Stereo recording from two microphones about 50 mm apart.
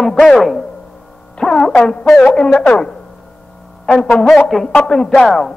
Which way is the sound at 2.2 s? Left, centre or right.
Centre.